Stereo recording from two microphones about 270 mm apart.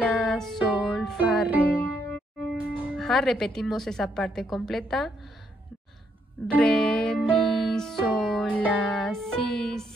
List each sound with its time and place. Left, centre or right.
0.0 s music: centre
2.0 s speech: centre
6.4 s music: centre